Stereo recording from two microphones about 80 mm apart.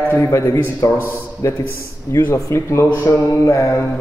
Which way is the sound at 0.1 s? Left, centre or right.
Left.